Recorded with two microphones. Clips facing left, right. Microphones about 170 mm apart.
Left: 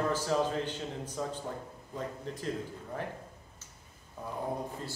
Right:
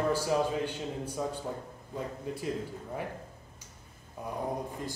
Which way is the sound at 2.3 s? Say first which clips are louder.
Right 3 dB; 10° right (ahead or behind).